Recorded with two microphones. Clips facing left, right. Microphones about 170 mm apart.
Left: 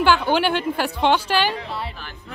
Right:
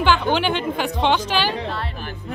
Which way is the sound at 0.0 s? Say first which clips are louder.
Left 1 dB; 10° left (ahead or behind).